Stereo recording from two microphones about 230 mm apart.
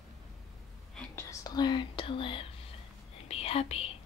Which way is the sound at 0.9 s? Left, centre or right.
Centre.